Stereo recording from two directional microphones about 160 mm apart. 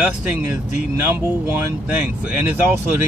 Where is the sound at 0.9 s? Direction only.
15° right (ahead or behind).